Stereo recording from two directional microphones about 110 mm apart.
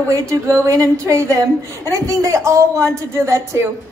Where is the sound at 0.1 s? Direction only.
30° right (ahead or behind).